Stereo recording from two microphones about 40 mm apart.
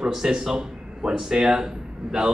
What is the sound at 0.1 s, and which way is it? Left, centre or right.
A man's voice, centre.